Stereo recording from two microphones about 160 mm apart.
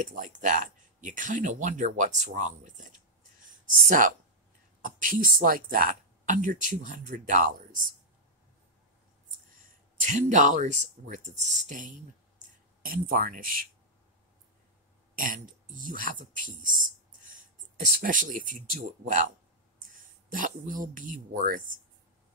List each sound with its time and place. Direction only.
0.0 s speech: 55° right (ahead or behind)
3.4 s a sound: 55° right (ahead or behind)
4.8 s speech: 55° right (ahead or behind)
10.0 s speech: 50° right (ahead or behind)
12.4 s speech: 65° right (ahead or behind)
15.1 s speech: 60° right (ahead or behind)
18.0 s speech: 55° right (ahead or behind)